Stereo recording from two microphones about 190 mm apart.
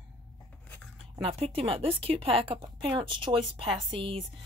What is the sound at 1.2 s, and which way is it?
Speech, 30° right (ahead or behind).